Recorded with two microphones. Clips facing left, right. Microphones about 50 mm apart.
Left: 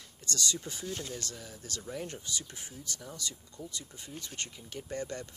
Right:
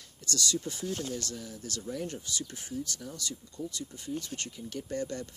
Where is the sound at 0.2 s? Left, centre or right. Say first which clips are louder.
Right 3 dB; centre.